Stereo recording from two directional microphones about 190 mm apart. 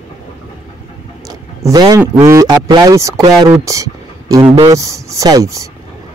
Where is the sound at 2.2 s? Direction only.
20° right (ahead or behind).